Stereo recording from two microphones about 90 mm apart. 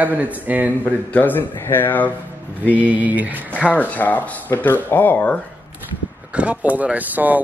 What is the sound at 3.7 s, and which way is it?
Speech, 20° left (ahead or behind).